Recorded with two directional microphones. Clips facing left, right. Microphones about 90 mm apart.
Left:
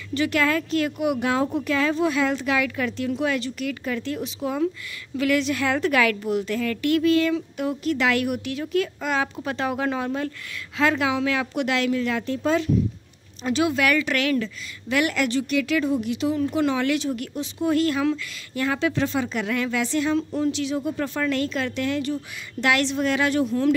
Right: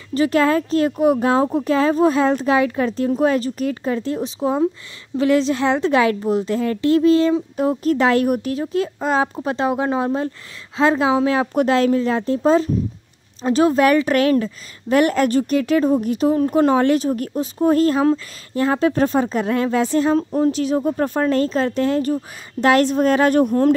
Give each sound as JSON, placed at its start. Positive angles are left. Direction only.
{"t": 0.1, "sound": "a woman's voice", "side_deg": -35}